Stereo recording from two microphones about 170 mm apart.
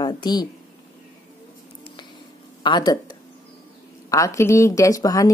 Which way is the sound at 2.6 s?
25° left (ahead or behind).